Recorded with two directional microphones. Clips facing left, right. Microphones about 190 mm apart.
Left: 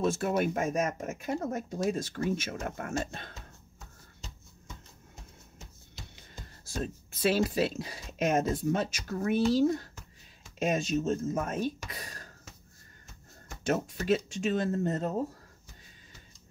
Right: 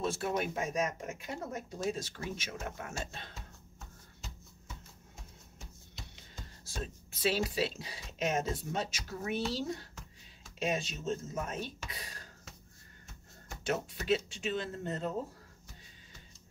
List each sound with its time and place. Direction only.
0.1 s speech: 50° left (ahead or behind)
6.7 s speech: 50° left (ahead or behind)
13.7 s speech: 45° left (ahead or behind)